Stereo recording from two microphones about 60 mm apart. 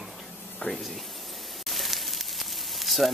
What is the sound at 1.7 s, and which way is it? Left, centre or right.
Sizzle, centre.